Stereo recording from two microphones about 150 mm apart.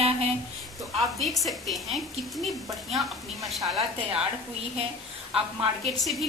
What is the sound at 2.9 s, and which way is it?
A woman's voice, centre (ahead or behind).